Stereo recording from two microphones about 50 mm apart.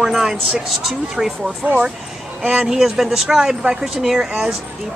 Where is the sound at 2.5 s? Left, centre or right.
Centre.